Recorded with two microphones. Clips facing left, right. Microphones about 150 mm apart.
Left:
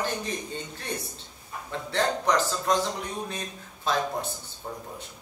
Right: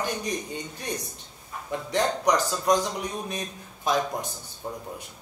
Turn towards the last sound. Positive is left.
turn(degrees=-10)  # may be behind; listen again after turning